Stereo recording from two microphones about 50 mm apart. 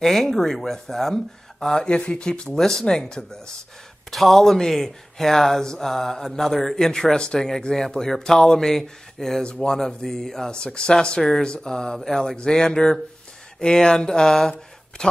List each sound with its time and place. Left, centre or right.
0.0 s speech: centre